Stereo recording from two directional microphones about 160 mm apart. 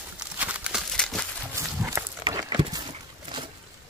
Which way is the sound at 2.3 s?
25° right (ahead or behind).